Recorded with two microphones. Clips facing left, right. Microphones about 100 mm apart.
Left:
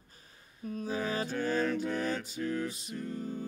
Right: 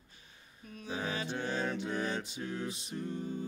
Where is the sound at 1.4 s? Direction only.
25° right (ahead or behind).